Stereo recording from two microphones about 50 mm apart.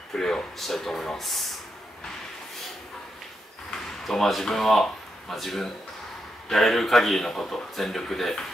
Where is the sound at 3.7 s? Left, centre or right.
Centre.